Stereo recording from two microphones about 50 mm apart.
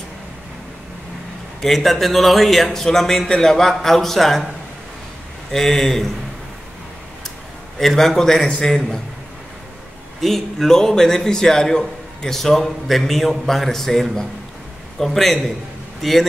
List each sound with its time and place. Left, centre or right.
1.6 s speech: centre
5.5 s a man's voice: centre
7.8 s a man's voice: centre
10.2 s a man's voice: centre